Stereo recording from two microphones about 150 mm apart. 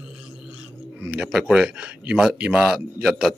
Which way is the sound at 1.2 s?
5° right (ahead or behind).